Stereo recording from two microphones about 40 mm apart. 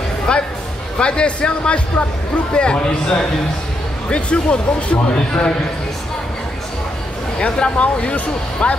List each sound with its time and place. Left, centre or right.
0.3 s speech: left
7.3 s speech: left